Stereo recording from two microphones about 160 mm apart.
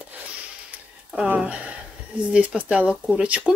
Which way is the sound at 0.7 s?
10° right (ahead or behind).